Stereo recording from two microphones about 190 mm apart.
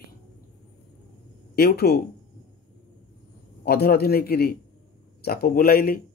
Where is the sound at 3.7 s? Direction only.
55° left (ahead or behind).